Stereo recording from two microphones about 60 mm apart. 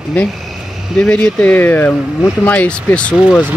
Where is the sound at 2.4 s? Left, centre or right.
Centre.